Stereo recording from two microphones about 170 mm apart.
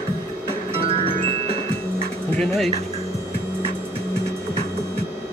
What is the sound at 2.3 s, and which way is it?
Speech, centre (ahead or behind).